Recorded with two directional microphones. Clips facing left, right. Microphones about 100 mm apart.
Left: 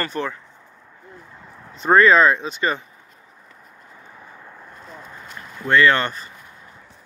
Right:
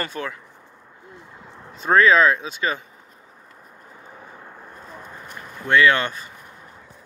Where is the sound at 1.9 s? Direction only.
Centre (ahead or behind).